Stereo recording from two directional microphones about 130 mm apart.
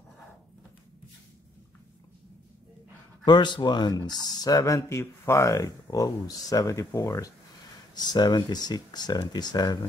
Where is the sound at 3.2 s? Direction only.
35° left (ahead or behind).